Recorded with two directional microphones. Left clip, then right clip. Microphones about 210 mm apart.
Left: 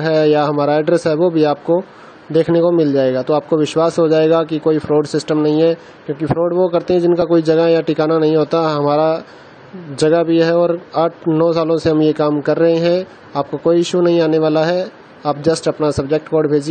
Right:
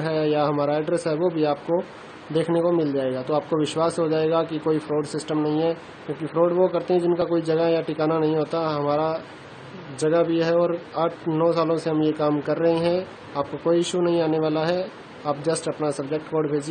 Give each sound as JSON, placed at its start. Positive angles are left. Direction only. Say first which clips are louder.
{"t": 0.0, "sound": "a man's voice", "louder": "left 9 dB", "side_deg": 30}